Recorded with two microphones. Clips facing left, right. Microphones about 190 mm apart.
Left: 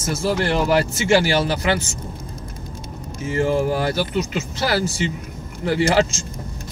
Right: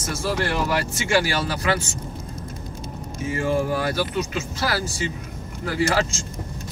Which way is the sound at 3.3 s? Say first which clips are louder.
Left 3 dB; 30° left (ahead or behind).